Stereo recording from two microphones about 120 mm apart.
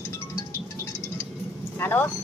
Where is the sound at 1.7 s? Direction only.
15° left (ahead or behind).